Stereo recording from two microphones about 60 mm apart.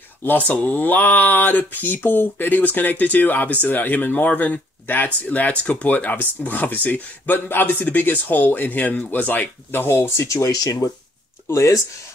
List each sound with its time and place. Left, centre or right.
0.2 s speech: left
11.4 s speech: left